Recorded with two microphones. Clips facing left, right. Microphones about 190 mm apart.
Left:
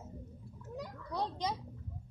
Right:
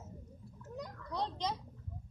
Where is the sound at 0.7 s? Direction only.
5° left (ahead or behind).